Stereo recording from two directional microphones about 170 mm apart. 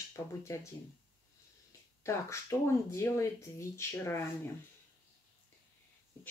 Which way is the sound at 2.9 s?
15° left (ahead or behind).